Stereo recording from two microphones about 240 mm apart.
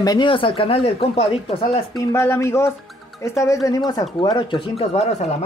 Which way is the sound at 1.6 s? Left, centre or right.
Centre.